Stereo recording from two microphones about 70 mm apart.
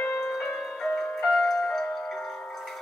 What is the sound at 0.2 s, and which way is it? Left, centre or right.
Music, centre.